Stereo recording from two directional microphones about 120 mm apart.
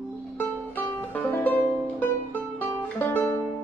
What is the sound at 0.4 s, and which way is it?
Music, 15° left (ahead or behind).